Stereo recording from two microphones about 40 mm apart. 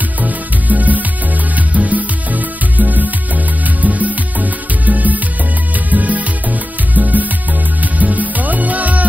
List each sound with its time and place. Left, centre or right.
0.2 s music: right